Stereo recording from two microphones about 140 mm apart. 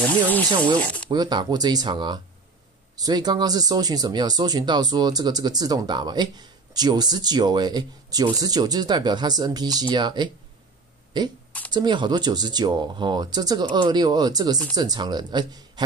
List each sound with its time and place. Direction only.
0.6 s speech: 10° left (ahead or behind)
1.1 s speech: 30° right (ahead or behind)
11.7 s speech: 35° right (ahead or behind)